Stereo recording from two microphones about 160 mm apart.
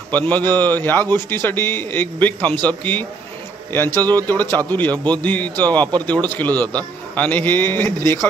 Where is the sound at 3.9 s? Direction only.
25° right (ahead or behind).